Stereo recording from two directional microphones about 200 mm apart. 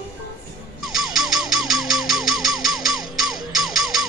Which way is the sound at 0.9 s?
Centre (ahead or behind).